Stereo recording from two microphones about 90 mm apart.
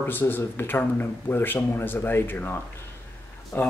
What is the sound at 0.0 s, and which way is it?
Speech, 20° left (ahead or behind).